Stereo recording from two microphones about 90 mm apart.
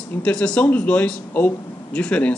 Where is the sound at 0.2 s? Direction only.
10° left (ahead or behind).